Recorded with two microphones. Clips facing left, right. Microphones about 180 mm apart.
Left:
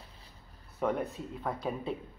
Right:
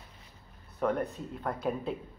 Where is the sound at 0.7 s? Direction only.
5° left (ahead or behind).